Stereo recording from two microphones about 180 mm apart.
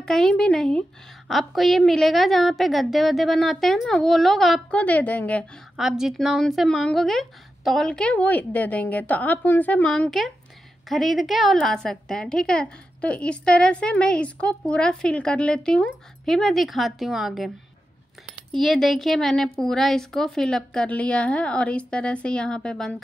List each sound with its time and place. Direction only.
0.0 s a woman's voice: 5° left (ahead or behind)
5.8 s a woman's voice: centre (ahead or behind)
18.5 s a woman's voice: centre (ahead or behind)